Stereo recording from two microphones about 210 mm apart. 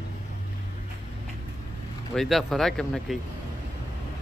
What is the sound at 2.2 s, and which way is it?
Speech, centre (ahead or behind).